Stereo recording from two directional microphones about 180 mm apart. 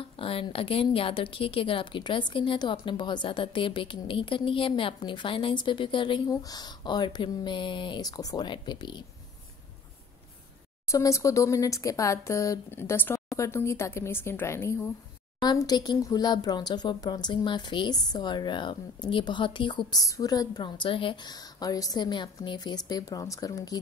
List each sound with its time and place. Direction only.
0.0 s a woman's voice: 30° left (ahead or behind)
10.9 s a woman's voice: 15° left (ahead or behind)